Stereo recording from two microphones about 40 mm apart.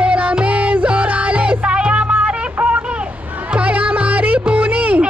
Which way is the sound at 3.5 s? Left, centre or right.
Right.